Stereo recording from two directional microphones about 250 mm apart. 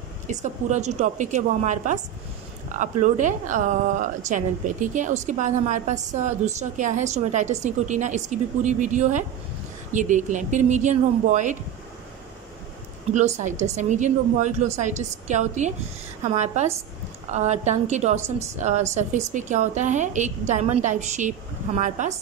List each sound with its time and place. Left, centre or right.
0.3 s speech: right
13.1 s speech: right